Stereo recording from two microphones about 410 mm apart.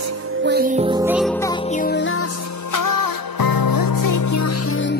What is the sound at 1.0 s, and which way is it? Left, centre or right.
Music, centre.